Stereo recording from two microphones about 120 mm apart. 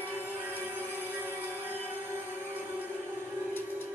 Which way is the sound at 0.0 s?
15° right (ahead or behind).